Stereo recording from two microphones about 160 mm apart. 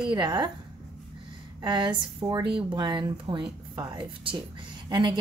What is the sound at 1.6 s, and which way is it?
A woman's voice, 30° right (ahead or behind).